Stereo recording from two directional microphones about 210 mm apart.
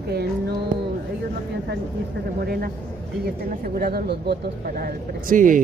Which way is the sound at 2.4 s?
45° right (ahead or behind).